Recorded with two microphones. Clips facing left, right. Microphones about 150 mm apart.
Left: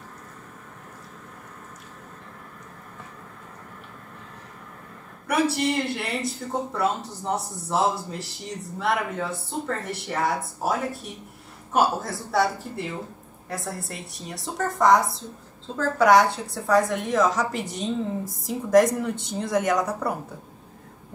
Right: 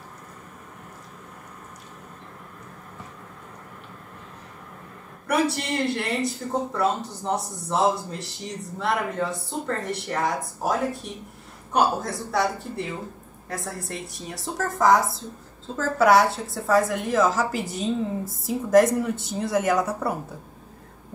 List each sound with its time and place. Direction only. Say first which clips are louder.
5.2 s speech: left 1 dB; centre (ahead or behind)